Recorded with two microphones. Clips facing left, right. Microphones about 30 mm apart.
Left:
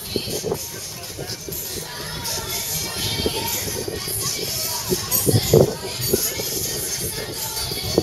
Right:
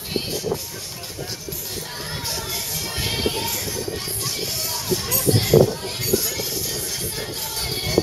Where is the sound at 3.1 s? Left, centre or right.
Centre.